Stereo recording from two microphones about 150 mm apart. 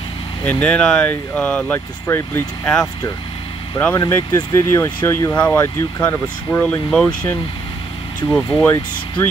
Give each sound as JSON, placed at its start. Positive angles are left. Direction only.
{"t": 0.5, "sound": "speech", "side_deg": 10}
{"t": 3.8, "sound": "speech", "side_deg": 15}